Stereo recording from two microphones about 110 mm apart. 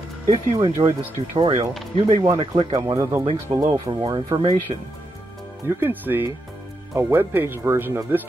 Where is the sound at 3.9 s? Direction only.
50° right (ahead or behind).